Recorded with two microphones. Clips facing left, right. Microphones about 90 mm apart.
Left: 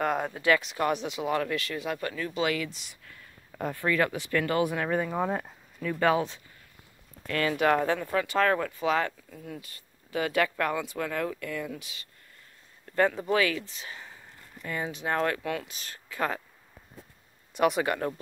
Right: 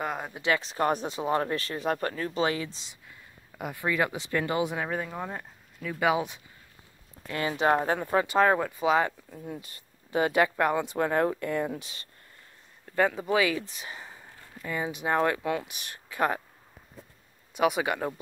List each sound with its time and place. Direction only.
0.0 s a sound: centre (ahead or behind)
0.3 s speech: 25° right (ahead or behind)
4.8 s speech: centre (ahead or behind); by 12.1 s 35° right (ahead or behind)
12.9 s speech: 10° right (ahead or behind)
17.6 s speech: 5° right (ahead or behind)